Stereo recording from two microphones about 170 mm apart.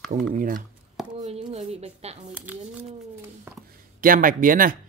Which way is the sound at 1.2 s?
40° right (ahead or behind).